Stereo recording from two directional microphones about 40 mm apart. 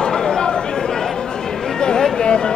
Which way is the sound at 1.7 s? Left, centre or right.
Centre.